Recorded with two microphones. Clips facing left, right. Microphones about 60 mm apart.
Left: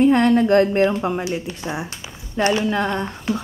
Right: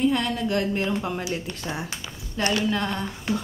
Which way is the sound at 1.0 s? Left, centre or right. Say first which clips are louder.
Left 6 dB; left.